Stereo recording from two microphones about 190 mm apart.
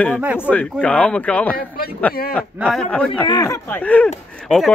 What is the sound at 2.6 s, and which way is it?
Speech, 5° left (ahead or behind).